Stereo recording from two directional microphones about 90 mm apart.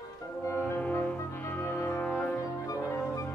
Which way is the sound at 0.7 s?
20° left (ahead or behind).